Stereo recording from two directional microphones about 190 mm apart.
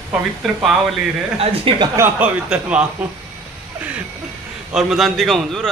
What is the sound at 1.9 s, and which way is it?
Speech, 5° right (ahead or behind).